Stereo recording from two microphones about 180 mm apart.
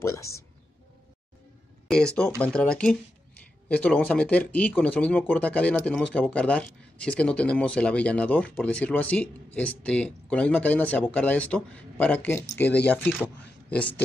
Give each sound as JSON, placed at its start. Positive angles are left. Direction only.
{"t": 0.0, "sound": "speech", "side_deg": 15}
{"t": 1.9, "sound": "speech", "side_deg": 5}